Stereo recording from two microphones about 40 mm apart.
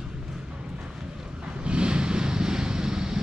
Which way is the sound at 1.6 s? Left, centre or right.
Right.